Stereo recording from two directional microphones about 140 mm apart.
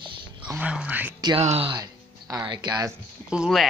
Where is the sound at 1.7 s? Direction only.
25° right (ahead or behind).